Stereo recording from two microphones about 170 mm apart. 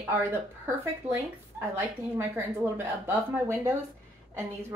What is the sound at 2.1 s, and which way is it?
Speech, 15° right (ahead or behind).